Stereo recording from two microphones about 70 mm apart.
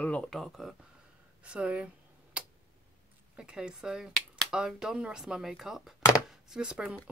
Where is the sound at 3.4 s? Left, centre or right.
Centre.